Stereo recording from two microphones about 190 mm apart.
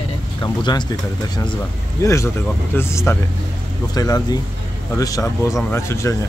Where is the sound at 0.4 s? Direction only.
25° left (ahead or behind).